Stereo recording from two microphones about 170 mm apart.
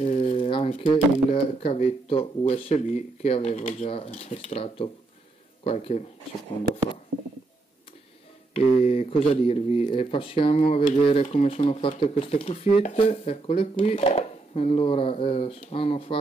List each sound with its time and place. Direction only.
0.0 s speech: 40° left (ahead or behind)
8.5 s speech: 35° left (ahead or behind)